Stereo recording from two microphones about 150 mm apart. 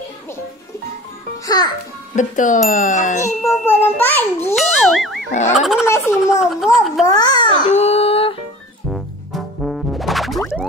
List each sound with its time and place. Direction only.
1.4 s a child's voice: 25° left (ahead or behind)
2.1 s speech: 60° left (ahead or behind)
3.2 s a child's voice: 20° left (ahead or behind)
4.6 s a child's voice: centre (ahead or behind)
5.3 s a sound: 50° left (ahead or behind)
5.9 s speech: 20° left (ahead or behind)
6.4 s speech: centre (ahead or behind)
7.1 s a child's voice: 25° left (ahead or behind)
7.7 s child singing: 45° left (ahead or behind)
8.9 s music: centre (ahead or behind)